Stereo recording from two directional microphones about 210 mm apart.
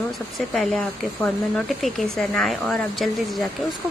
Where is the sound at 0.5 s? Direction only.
Centre (ahead or behind).